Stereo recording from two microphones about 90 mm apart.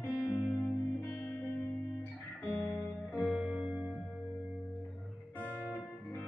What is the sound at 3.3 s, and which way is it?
Music, 5° right (ahead or behind).